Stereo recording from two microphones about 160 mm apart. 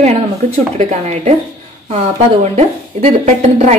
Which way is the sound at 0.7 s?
45° right (ahead or behind).